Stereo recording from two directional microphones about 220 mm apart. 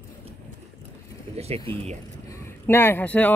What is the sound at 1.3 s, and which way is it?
Speech, 30° right (ahead or behind).